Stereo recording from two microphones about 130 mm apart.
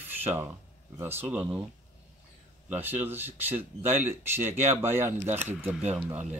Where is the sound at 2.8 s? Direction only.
15° right (ahead or behind).